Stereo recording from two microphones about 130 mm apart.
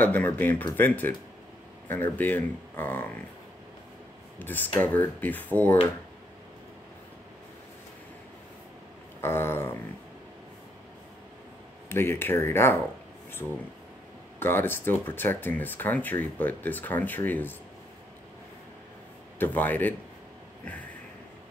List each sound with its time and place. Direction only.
0.0 s speech: 15° left (ahead or behind)
4.4 s speech: 15° left (ahead or behind)
9.2 s speech: 15° left (ahead or behind)
11.9 s speech: 20° left (ahead or behind)
14.4 s speech: 15° left (ahead or behind)
19.3 s speech: 15° left (ahead or behind)